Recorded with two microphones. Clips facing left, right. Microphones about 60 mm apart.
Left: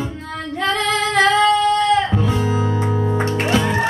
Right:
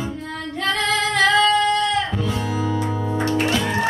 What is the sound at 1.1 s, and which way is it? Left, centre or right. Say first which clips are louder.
Female singing: left 3 dB; left.